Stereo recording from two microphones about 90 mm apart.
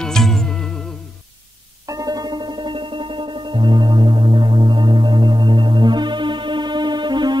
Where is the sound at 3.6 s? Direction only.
55° right (ahead or behind).